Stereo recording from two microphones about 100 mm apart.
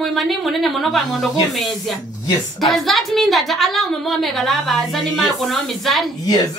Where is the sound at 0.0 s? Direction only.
Centre (ahead or behind).